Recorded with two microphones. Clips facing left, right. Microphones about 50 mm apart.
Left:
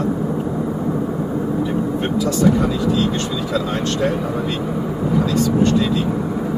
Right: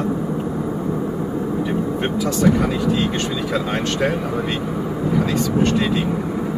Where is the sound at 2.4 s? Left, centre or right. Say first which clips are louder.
Even; right.